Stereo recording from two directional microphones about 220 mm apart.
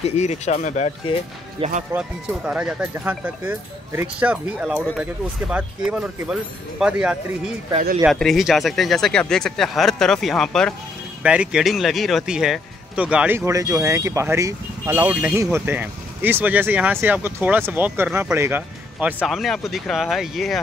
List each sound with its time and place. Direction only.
0.0 s speech: 30° left (ahead or behind)
1.6 s speech: 30° right (ahead or behind)
2.0 s speech: 5° right (ahead or behind)